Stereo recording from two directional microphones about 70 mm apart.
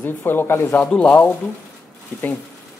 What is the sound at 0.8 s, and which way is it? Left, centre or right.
Speech, centre.